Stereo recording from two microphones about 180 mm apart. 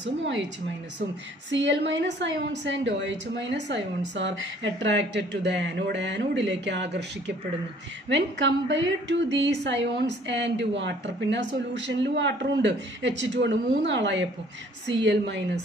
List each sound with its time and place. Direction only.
1.5 s a woman's voice: 80° right